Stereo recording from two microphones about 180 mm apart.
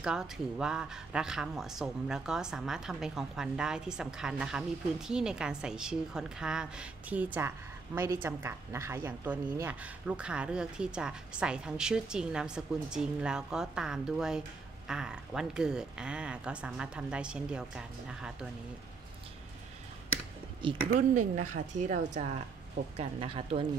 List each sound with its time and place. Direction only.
0.0 s speech: 5° right (ahead or behind)
20.9 s speech: 45° right (ahead or behind)
22.9 s speech: 30° right (ahead or behind)